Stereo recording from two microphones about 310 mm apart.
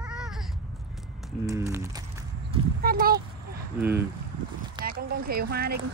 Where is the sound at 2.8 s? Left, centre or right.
Right.